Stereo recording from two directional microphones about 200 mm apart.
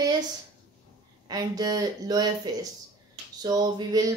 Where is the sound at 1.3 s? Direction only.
20° right (ahead or behind).